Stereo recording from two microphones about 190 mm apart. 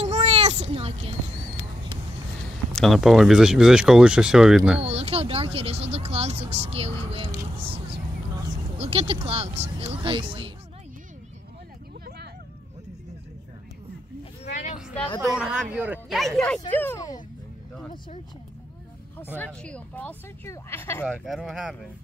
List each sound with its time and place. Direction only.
0.0 s a sound: 35° right (ahead or behind)
2.7 s speech: centre (ahead or behind)
4.8 s speech: 30° right (ahead or behind)
7.5 s a sound: 30° right (ahead or behind)
8.7 s speech: 30° right (ahead or behind)
14.4 s vehicle: 40° left (ahead or behind)
15.2 s speech: 5° right (ahead or behind); by 17.2 s 15° left (ahead or behind)
19.3 s speech: 5° left (ahead or behind)
21.2 s speech: centre (ahead or behind)